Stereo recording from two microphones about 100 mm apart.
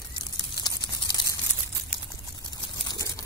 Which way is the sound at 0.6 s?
45° left (ahead or behind).